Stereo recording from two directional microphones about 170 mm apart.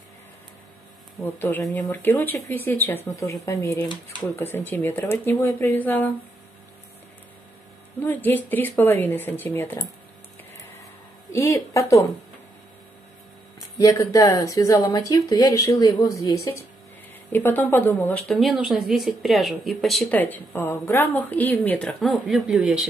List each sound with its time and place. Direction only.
1.2 s speech: 10° left (ahead or behind)
8.0 s speech: 10° left (ahead or behind)
11.3 s speech: 15° left (ahead or behind)
13.6 s speech: 20° left (ahead or behind); by 22.8 s centre (ahead or behind)